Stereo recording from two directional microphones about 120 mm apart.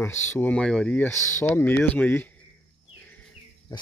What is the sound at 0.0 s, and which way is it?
Speech, 20° left (ahead or behind).